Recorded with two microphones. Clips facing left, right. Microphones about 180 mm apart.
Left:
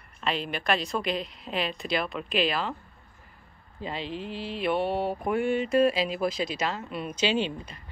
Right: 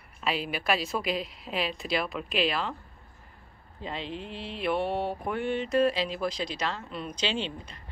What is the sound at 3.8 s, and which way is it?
Speech, 5° left (ahead or behind).